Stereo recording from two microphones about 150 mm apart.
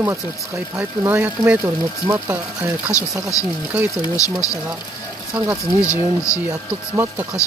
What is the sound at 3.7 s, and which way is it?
Speech, 10° right (ahead or behind).